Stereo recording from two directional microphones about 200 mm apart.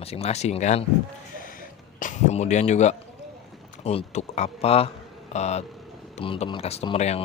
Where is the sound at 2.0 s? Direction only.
35° left (ahead or behind).